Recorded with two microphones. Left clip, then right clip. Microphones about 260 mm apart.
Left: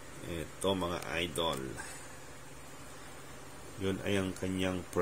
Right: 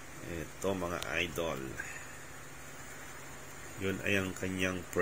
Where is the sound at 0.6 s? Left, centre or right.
Centre.